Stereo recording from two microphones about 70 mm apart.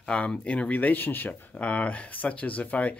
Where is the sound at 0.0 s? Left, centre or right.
Centre.